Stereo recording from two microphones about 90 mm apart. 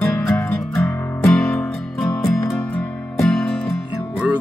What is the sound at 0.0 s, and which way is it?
Music, 20° left (ahead or behind).